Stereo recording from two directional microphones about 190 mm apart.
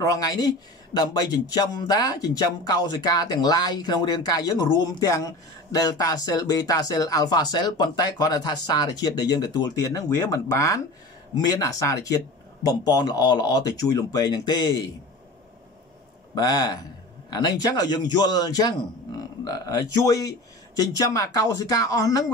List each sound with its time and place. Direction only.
0.0 s speech: 20° left (ahead or behind)
16.3 s speech: 20° left (ahead or behind)